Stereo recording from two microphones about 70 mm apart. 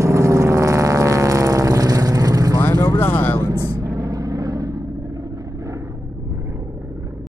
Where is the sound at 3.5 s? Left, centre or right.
Right.